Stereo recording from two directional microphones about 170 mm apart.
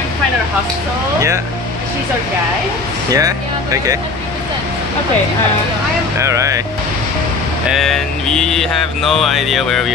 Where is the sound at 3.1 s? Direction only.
20° right (ahead or behind).